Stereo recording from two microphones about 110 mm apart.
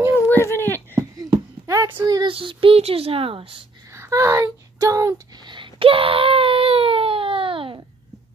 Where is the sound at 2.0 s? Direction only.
35° right (ahead or behind).